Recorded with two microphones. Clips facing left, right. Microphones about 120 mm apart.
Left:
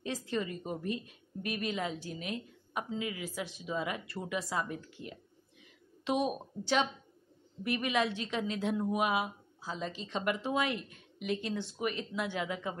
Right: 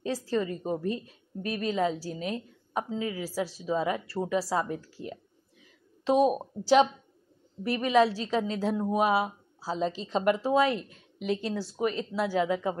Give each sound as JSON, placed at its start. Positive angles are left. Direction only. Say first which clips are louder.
{"t": 0.0, "sound": "a woman's voice", "louder": "right 6 dB", "side_deg": -35}